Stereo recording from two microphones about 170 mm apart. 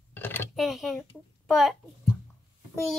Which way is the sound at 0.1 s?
10° left (ahead or behind).